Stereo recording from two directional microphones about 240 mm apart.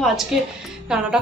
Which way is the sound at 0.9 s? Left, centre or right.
Centre.